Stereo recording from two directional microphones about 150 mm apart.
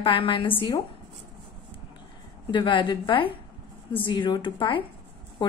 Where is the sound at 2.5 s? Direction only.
35° left (ahead or behind).